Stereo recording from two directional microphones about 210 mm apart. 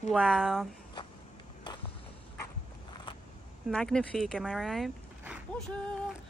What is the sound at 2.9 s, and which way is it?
Vehicle, 20° left (ahead or behind).